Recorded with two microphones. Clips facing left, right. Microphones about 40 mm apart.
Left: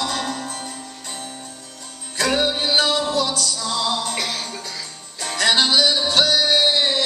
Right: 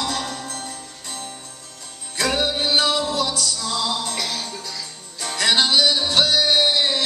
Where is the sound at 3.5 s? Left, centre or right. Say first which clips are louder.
Left 2 dB; centre.